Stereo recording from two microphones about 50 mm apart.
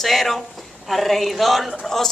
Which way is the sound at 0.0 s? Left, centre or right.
Centre.